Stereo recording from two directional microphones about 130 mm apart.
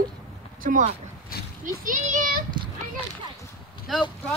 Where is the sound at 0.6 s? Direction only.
90° right.